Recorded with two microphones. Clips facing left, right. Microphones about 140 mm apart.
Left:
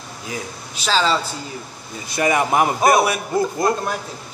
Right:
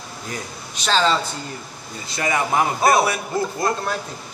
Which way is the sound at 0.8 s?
5° left (ahead or behind).